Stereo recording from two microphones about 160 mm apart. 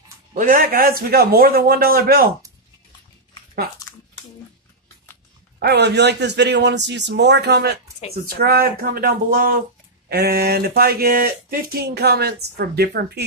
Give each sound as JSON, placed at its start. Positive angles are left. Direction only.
{"t": 0.4, "sound": "a man's voice", "side_deg": -60}
{"t": 5.6, "sound": "speech", "side_deg": -90}
{"t": 8.4, "sound": "a man's voice", "side_deg": -70}
{"t": 10.0, "sound": "speech", "side_deg": -80}